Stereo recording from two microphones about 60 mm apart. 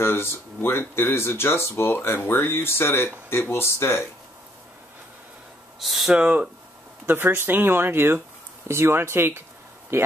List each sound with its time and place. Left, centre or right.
0.0 s speech: left
5.8 s speech: centre
6.1 s speech: centre
7.1 s speech: right